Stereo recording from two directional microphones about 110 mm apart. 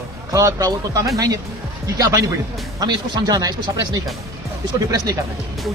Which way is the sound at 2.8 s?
35° right (ahead or behind).